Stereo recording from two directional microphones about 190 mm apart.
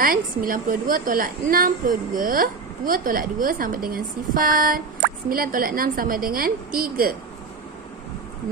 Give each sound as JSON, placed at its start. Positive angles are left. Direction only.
{"t": 0.0, "sound": "a woman's voice", "side_deg": -50}